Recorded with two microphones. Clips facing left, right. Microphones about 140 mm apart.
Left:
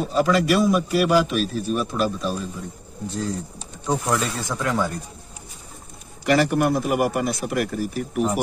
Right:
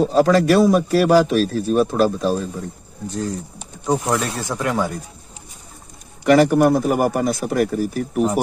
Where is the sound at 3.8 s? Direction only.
15° right (ahead or behind).